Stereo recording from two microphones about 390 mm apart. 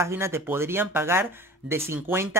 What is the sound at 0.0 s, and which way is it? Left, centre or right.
Speech, centre.